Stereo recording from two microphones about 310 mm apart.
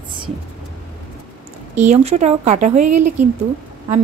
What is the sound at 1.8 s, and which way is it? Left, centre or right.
Speech, right.